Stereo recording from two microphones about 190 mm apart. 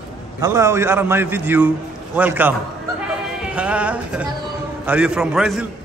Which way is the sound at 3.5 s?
5° right (ahead or behind).